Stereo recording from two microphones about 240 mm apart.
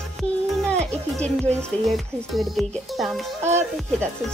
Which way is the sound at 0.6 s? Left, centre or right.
Centre.